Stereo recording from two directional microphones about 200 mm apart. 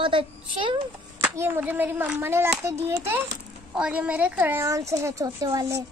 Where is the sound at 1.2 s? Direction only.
10° right (ahead or behind).